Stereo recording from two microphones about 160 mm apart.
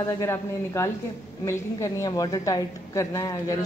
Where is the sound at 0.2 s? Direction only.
15° left (ahead or behind).